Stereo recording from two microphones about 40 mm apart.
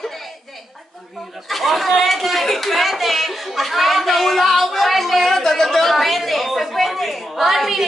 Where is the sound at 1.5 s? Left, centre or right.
Centre.